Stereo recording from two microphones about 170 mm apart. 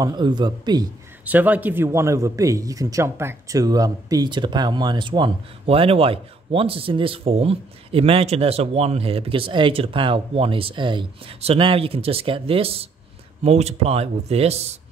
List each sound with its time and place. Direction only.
0.0 s a man's voice: 25° right (ahead or behind)
1.2 s a man's voice: 10° right (ahead or behind); by 14.7 s 35° right (ahead or behind)